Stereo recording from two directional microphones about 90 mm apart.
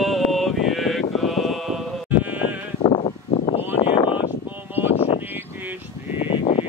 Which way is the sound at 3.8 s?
65° left (ahead or behind).